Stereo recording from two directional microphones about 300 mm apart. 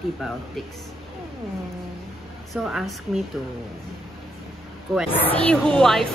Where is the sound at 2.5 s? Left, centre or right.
Centre.